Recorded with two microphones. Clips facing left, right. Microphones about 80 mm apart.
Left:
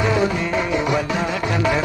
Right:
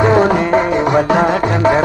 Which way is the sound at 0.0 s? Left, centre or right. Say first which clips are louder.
Right 8 dB; right.